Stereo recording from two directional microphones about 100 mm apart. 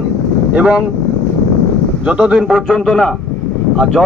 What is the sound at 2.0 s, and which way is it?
A man's voice, 10° right (ahead or behind).